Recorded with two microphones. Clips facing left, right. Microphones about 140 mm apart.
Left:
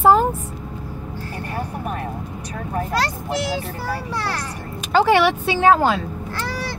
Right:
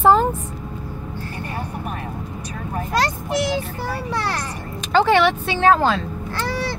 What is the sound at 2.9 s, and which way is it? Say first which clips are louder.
Speech: right 4 dB; 20° right (ahead or behind).